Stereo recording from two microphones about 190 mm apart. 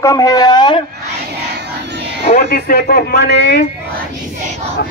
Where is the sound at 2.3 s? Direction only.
45° left (ahead or behind); by 3.7 s 65° left (ahead or behind).